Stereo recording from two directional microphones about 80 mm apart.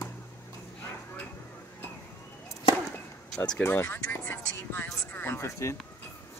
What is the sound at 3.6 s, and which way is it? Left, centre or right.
Music, left.